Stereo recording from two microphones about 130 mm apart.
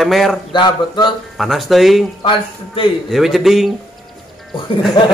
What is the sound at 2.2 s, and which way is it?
Speech, 40° left (ahead or behind).